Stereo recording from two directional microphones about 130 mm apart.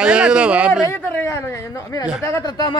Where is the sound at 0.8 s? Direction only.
20° left (ahead or behind).